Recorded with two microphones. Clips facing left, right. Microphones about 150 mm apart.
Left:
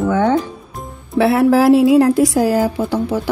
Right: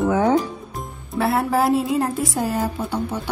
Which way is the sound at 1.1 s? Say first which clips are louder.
Left 8 dB; 85° left.